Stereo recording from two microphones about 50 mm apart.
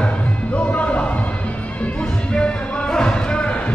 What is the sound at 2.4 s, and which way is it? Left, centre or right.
Music, centre.